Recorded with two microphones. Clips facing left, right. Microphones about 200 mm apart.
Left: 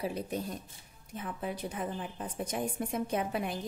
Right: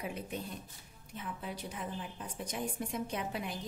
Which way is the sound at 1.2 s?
50° left (ahead or behind).